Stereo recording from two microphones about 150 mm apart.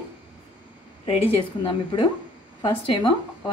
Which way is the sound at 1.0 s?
35° left (ahead or behind).